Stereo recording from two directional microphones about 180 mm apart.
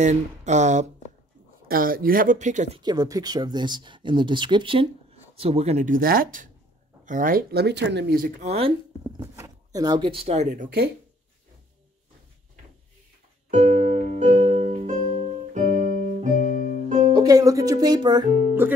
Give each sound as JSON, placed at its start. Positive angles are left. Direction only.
{"t": 0.0, "sound": "speech", "side_deg": -40}
{"t": 1.7, "sound": "speech", "side_deg": -55}
{"t": 2.8, "sound": "speech", "side_deg": -20}
{"t": 8.4, "sound": "speech", "side_deg": -35}
{"t": 9.2, "sound": "speech", "side_deg": -15}
{"t": 13.5, "sound": "music", "side_deg": -40}
{"t": 17.1, "sound": "speech", "side_deg": -20}
{"t": 18.6, "sound": "speech", "side_deg": -10}